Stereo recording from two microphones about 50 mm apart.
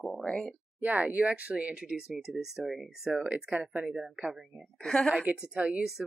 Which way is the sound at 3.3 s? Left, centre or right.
Right.